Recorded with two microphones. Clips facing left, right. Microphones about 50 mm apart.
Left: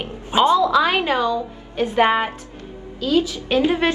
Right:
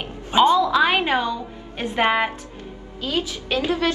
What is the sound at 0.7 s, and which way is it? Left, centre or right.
A woman's voice, right.